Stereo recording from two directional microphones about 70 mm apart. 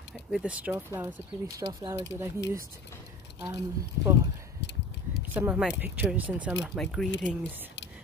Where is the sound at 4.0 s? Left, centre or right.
Right.